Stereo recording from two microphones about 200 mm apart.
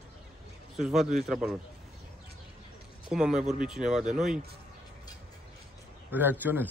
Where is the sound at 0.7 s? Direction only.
Centre (ahead or behind).